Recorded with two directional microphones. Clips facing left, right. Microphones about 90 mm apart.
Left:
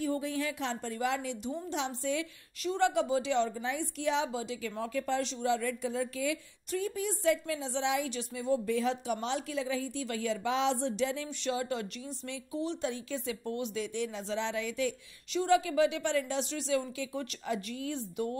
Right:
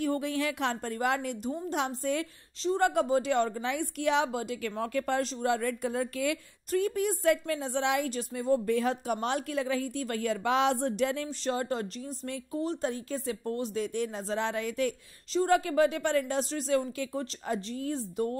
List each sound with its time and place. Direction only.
0.0 s a woman's voice: 65° right (ahead or behind)
8.1 s speech: 45° right (ahead or behind)
11.4 s speech: 40° right (ahead or behind)